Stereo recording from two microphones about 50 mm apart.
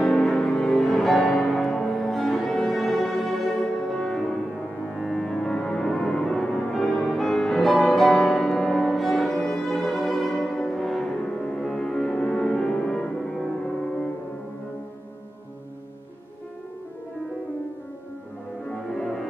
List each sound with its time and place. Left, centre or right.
0.0 s music: centre
9.3 s violin: centre
9.7 s music: centre
18.7 s music: centre